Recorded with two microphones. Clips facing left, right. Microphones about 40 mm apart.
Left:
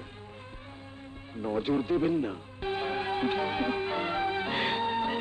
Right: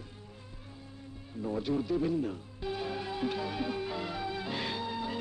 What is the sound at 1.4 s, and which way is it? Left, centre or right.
Music, left.